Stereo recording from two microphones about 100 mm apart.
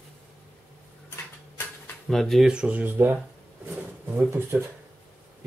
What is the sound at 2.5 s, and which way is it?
Speech, 10° right (ahead or behind).